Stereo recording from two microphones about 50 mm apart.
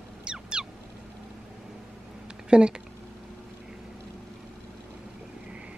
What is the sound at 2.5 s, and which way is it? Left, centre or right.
Speech, centre.